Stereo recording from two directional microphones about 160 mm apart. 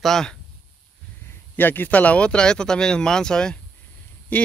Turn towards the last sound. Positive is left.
turn(degrees=10)  # may be behind; listen again after turning